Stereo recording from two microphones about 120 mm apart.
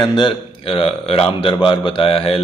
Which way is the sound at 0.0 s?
40° left (ahead or behind).